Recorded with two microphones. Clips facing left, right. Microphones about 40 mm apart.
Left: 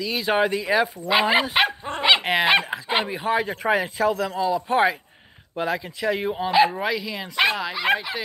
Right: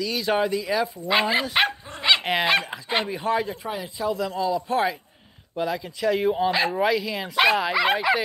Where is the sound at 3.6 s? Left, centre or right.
Left.